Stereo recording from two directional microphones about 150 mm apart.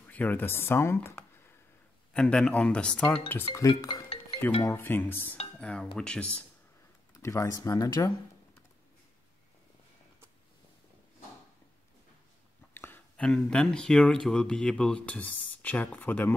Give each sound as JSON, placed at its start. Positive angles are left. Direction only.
{"t": 0.0, "sound": "speech", "side_deg": 10}
{"t": 2.1, "sound": "speech", "side_deg": 5}
{"t": 3.5, "sound": "speech", "side_deg": 25}
{"t": 5.6, "sound": "cutlery", "side_deg": 10}
{"t": 5.9, "sound": "speech", "side_deg": 5}
{"t": 7.2, "sound": "speech", "side_deg": 20}
{"t": 12.7, "sound": "speech", "side_deg": 15}